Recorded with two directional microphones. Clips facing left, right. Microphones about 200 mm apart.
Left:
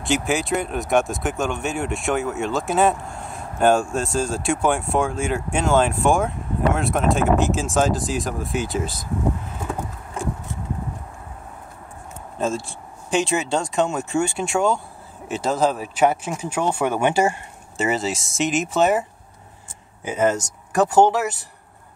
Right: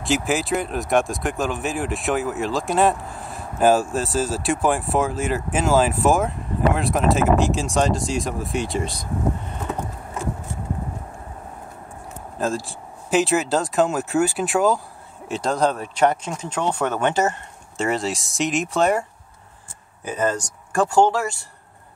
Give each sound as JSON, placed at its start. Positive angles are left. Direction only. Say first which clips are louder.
{"t": 0.0, "sound": "speech", "louder": "even", "side_deg": 0}
{"t": 12.4, "sound": "speech", "louder": "even", "side_deg": 0}
{"t": 20.2, "sound": "speech", "louder": "left 4 dB", "side_deg": 20}